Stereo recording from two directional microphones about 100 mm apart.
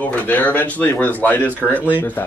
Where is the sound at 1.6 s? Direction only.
15° right (ahead or behind).